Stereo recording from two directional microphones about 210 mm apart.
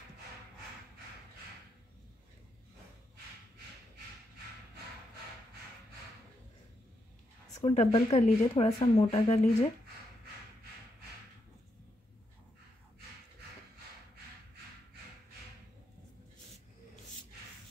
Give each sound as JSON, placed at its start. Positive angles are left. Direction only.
{"t": 7.5, "sound": "speech", "side_deg": 30}